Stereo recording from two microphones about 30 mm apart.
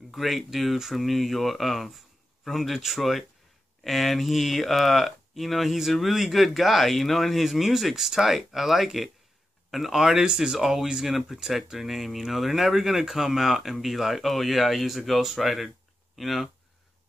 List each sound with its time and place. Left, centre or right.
0.1 s speech: centre
7.9 s speech: centre